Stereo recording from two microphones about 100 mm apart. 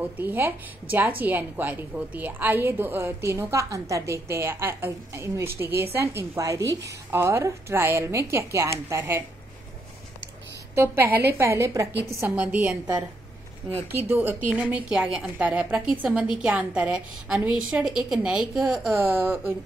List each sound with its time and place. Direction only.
0.0 s a woman's voice: 20° right (ahead or behind)
10.7 s a woman's voice: 25° right (ahead or behind)
12.4 s a woman's voice: 15° right (ahead or behind)
14.0 s a woman's voice: 20° right (ahead or behind); by 18.9 s centre (ahead or behind)
19.1 s a woman's voice: 25° right (ahead or behind)